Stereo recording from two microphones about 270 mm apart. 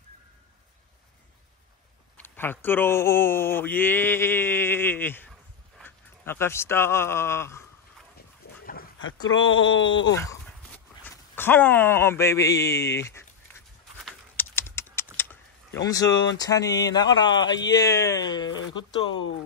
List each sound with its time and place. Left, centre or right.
2.1 s speech: centre
9.3 s speech: left
10.1 s speech: centre
14.0 s a sound: centre
15.8 s speech: centre